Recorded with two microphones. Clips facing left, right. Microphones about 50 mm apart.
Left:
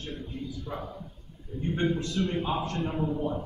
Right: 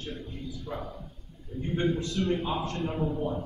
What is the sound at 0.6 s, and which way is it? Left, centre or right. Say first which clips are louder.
Speech: even; centre.